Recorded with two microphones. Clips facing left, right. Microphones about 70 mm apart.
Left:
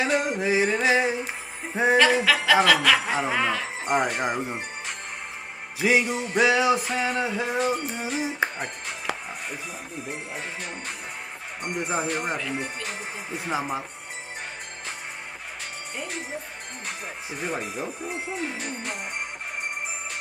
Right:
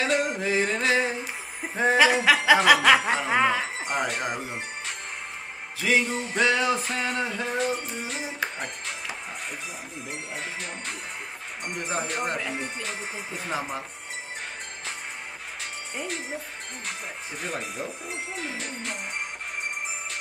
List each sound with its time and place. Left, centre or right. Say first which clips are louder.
0.0 s a sound: left 1 dB; centre
2.0 s speech: right 1 dB; centre
3.8 s speech: left 4 dB; centre
4.1 s music: left 3 dB; centre
5.8 s music: left 2 dB; centre
11.6 s music: left 3 dB; centre
12.5 s speech: left 1 dB; centre
17.4 s speech: left 3 dB; centre